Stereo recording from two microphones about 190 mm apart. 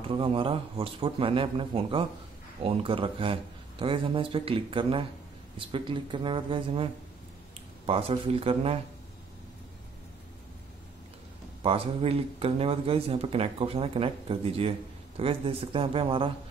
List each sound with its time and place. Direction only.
0.0 s speech: 30° right (ahead or behind)
11.6 s speech: 30° right (ahead or behind)